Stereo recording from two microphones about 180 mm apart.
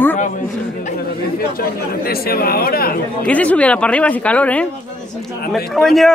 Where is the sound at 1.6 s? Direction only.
55° left (ahead or behind).